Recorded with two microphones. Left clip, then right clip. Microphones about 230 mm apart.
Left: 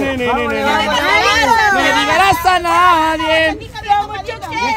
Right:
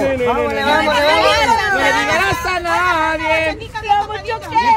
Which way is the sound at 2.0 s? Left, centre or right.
Left.